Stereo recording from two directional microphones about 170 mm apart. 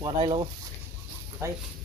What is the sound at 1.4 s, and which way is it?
Speech, 20° right (ahead or behind).